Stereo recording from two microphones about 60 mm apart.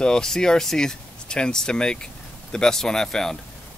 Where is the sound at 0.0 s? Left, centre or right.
Centre.